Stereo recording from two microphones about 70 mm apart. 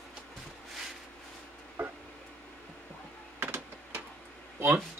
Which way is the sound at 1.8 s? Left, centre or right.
Right.